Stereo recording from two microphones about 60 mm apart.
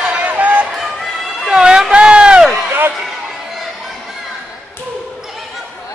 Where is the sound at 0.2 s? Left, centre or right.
Right.